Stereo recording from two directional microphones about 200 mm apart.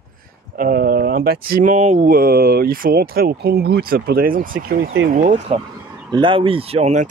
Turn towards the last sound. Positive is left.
turn(degrees=-30)  # may be behind; listen again after turning